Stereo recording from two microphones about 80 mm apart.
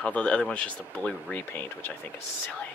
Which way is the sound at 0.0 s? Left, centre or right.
Centre.